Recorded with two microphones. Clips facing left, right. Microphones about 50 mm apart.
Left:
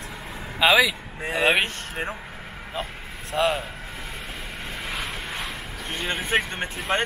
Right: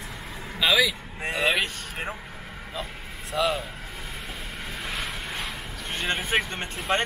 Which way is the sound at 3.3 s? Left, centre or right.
Left.